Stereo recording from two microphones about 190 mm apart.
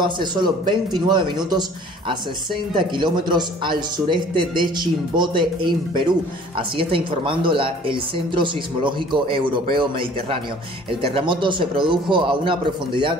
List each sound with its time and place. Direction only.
0.0 s speech: 25° right (ahead or behind)